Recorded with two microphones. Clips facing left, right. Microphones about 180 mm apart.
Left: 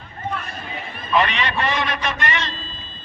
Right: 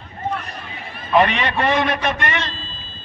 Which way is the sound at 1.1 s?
50° right (ahead or behind).